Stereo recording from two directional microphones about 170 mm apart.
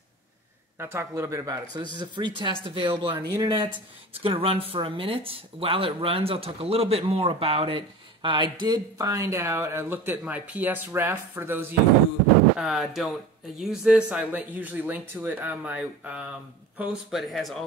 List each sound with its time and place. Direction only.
0.7 s speech: 15° right (ahead or behind)
12.5 s speech: centre (ahead or behind)